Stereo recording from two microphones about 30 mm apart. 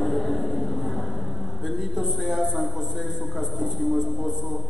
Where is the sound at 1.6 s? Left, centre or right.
Centre.